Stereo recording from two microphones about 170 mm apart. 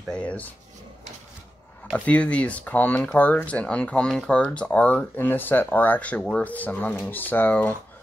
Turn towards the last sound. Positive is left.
turn(degrees=10)  # may be behind; listen again after turning